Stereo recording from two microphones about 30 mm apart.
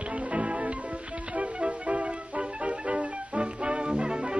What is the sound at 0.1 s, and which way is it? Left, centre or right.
Music, right.